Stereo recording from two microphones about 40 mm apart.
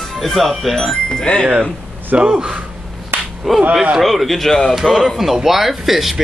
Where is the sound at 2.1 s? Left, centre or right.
Right.